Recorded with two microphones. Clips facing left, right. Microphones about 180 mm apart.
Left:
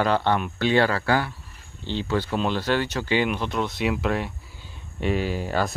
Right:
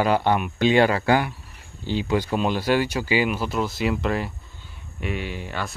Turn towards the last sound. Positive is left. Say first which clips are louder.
# left 6 dB
turn(degrees=40)  # may be behind; listen again after turning